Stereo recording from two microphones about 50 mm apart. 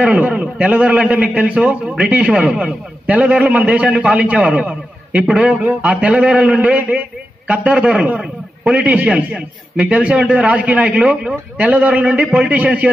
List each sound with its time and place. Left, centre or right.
0.0 s a man's voice: right